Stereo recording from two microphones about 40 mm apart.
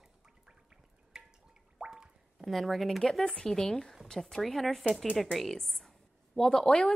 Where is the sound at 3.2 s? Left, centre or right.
Left.